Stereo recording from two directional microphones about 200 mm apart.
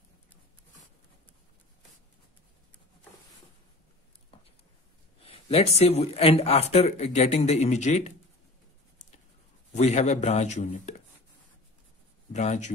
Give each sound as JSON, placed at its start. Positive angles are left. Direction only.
{"t": 5.2, "sound": "a man's voice", "side_deg": 30}
{"t": 9.8, "sound": "a man's voice", "side_deg": 35}
{"t": 12.3, "sound": "speech", "side_deg": 35}